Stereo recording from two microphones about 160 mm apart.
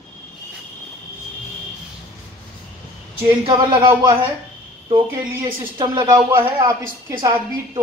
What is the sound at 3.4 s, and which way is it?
Speech, 30° right (ahead or behind).